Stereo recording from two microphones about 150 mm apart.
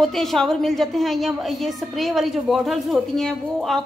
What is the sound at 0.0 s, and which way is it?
A woman's voice, centre (ahead or behind).